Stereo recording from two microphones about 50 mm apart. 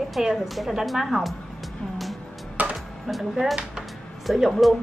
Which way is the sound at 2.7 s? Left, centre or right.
Centre.